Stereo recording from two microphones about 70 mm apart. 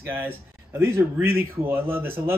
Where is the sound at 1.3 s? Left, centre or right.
Right.